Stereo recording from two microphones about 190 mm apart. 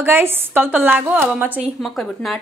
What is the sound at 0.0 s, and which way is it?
A woman's voice, 10° right (ahead or behind).